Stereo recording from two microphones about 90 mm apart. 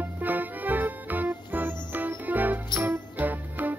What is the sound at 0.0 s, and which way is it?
Music, 20° right (ahead or behind).